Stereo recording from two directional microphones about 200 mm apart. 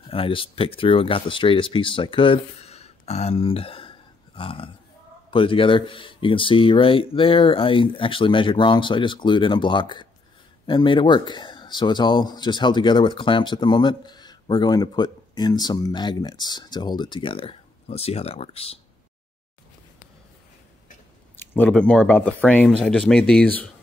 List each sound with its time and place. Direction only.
0.1 s speech: 25° left (ahead or behind)
21.4 s speech: 5° left (ahead or behind)